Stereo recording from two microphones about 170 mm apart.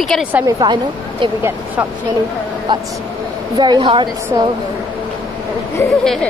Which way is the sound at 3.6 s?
30° right (ahead or behind).